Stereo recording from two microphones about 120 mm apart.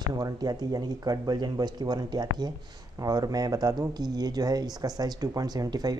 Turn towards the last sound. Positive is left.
turn(degrees=-35)  # may be behind; listen again after turning